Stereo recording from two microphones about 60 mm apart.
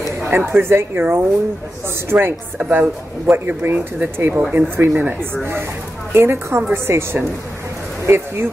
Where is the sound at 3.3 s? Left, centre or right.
Right.